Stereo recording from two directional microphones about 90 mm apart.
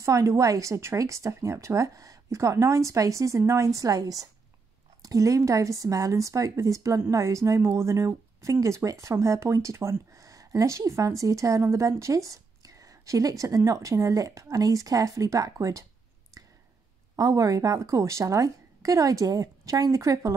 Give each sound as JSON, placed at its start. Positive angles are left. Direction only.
{"t": 0.0, "sound": "a woman's voice", "side_deg": -35}
{"t": 17.1, "sound": "a woman's voice", "side_deg": -40}